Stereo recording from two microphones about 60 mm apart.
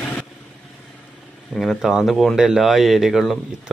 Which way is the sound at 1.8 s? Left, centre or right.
Centre.